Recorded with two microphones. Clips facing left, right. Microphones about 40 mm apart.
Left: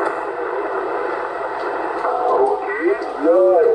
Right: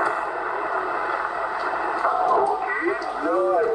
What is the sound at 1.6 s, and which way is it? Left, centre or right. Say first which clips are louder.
Radio: left 2 dB; centre.